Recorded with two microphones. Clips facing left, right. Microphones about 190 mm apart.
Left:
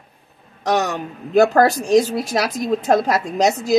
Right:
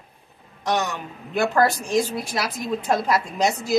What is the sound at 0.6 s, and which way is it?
A man's voice, 40° left (ahead or behind).